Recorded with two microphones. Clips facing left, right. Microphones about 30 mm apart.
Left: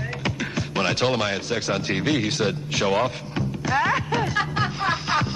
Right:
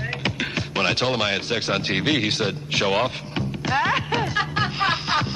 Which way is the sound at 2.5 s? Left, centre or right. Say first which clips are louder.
Right 1 dB; centre.